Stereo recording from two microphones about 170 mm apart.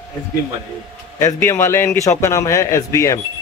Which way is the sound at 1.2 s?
15° left (ahead or behind).